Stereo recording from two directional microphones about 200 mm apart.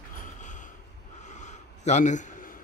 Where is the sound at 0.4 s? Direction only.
40° left (ahead or behind).